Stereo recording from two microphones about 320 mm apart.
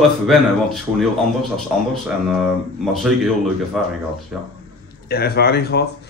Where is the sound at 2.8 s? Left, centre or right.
Centre.